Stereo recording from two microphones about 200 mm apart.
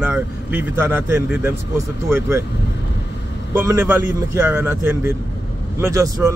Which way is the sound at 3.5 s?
15° right (ahead or behind).